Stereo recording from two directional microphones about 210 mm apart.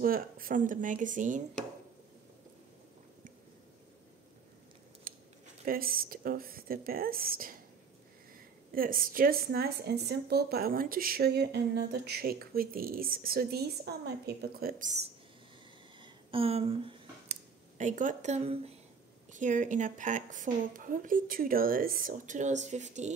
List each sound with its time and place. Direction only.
0.0 s a woman's voice: 45° right (ahead or behind)
5.1 s a sound: 40° right (ahead or behind)
5.7 s speech: 45° right (ahead or behind)
8.7 s speech: 45° right (ahead or behind)
16.0 s finger snapping: 25° right (ahead or behind)
19.3 s a woman's voice: 35° right (ahead or behind)